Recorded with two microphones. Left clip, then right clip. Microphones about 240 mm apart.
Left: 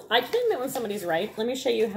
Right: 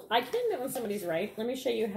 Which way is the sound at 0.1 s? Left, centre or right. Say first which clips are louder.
Left 5 dB; centre.